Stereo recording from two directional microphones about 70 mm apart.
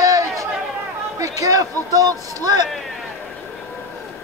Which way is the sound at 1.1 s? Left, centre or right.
Right.